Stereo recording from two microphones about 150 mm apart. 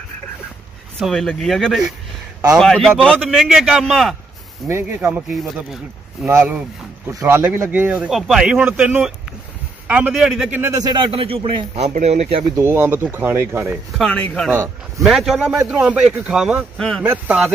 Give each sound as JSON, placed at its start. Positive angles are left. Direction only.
{"t": 0.9, "sound": "a man's voice", "side_deg": 0}
{"t": 4.6, "sound": "speech", "side_deg": -15}
{"t": 5.3, "sound": "a man's voice", "side_deg": 0}
{"t": 6.2, "sound": "a man's voice", "side_deg": -15}
{"t": 10.8, "sound": "a man's voice", "side_deg": -30}
{"t": 12.5, "sound": "speech", "side_deg": -15}
{"t": 13.7, "sound": "a man's voice", "side_deg": 0}
{"t": 14.5, "sound": "speech", "side_deg": -15}
{"t": 15.0, "sound": "a man's voice", "side_deg": 0}
{"t": 17.0, "sound": "speech", "side_deg": -10}